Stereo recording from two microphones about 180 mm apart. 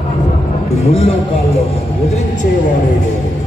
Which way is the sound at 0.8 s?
35° left (ahead or behind).